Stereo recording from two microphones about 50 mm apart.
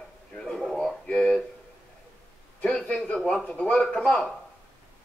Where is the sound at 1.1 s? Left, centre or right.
Centre.